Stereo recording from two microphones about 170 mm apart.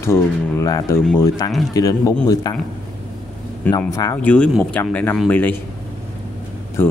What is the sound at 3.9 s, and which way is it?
Speech, 20° left (ahead or behind).